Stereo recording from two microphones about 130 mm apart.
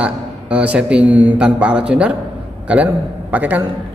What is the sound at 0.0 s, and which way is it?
Speech, 10° right (ahead or behind).